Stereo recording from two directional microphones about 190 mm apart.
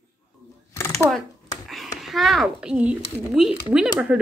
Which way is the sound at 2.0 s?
Centre (ahead or behind).